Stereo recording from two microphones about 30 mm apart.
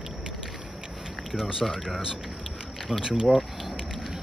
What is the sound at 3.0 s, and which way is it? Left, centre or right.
Speech, right.